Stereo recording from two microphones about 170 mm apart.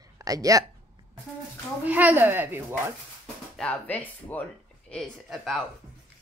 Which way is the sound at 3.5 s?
5° left (ahead or behind).